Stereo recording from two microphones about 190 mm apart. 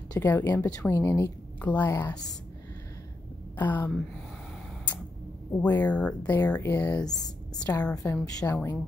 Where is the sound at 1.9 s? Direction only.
20° left (ahead or behind).